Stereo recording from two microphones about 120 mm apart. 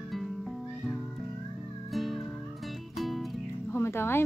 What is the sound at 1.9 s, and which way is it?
Music, centre (ahead or behind).